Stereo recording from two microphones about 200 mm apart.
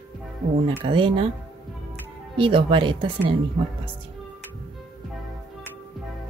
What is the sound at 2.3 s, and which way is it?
Speech, 25° right (ahead or behind).